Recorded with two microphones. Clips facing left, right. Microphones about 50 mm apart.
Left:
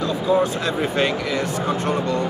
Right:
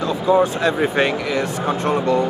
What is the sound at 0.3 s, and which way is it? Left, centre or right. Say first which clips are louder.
Speech: right 4 dB; right.